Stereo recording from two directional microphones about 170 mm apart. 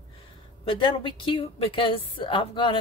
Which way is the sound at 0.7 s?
30° left (ahead or behind).